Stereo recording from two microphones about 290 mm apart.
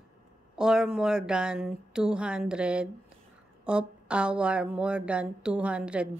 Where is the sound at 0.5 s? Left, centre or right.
Centre.